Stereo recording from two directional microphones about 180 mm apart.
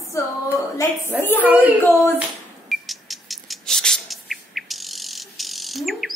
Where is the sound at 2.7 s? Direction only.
Centre (ahead or behind).